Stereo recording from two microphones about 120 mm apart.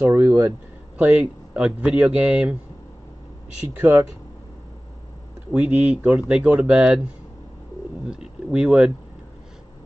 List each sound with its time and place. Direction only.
0.0 s speech: 20° right (ahead or behind)
5.5 s speech: 10° right (ahead or behind)
8.1 s speech: 5° right (ahead or behind)